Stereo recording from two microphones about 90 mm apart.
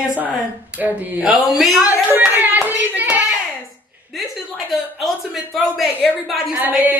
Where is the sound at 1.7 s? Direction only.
15° right (ahead or behind).